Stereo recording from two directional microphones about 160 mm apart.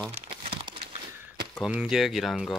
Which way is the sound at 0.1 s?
40° right (ahead or behind).